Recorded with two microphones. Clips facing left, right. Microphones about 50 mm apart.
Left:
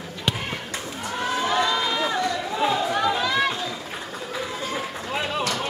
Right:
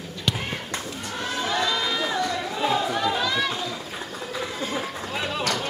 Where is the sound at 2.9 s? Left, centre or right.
Centre.